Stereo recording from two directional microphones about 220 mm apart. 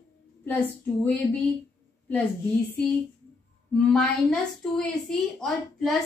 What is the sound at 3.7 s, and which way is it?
A woman's voice, 5° left (ahead or behind).